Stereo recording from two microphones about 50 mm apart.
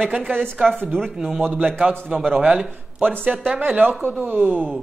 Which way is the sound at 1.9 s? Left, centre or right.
Centre.